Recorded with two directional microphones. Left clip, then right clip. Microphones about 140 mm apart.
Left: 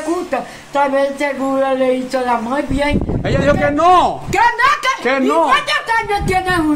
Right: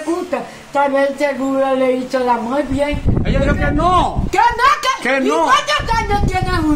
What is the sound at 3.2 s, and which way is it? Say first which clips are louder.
Speech: left 4 dB; 45° left (ahead or behind).